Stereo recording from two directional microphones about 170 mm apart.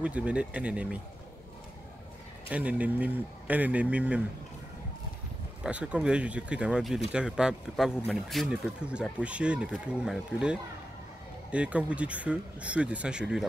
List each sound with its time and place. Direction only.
0.0 s speech: 5° right (ahead or behind)
2.5 s speech: 10° right (ahead or behind)
5.6 s speech: 5° right (ahead or behind)